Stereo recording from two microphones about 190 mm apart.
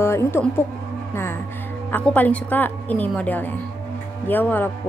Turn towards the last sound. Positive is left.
turn(degrees=10)  # may be behind; listen again after turning